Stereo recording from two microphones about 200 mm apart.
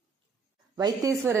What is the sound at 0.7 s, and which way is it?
Speech, 20° right (ahead or behind).